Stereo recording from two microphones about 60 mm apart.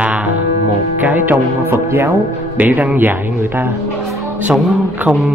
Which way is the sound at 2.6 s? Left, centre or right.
Right.